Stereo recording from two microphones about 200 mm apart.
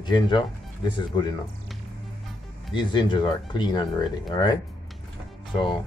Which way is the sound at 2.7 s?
25° left (ahead or behind).